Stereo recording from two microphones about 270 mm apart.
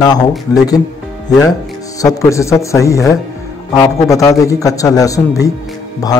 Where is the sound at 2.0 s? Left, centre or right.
Centre.